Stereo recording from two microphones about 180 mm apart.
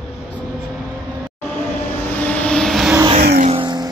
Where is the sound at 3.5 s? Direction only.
25° right (ahead or behind).